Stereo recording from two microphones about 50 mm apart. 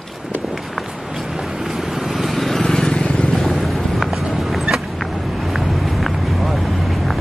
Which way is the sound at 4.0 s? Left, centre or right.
Centre.